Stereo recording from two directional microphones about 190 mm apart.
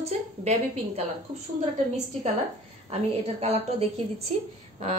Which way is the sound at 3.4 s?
35° right (ahead or behind).